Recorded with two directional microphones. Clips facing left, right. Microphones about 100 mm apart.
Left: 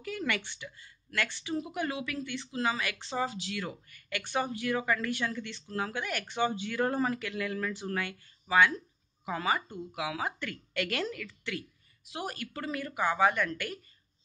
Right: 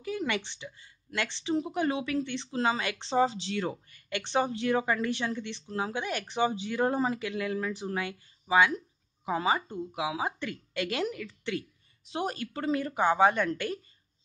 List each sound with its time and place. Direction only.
0.0 s speech: 20° right (ahead or behind)